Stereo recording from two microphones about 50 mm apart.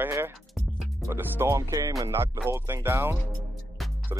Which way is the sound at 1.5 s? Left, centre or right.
Right.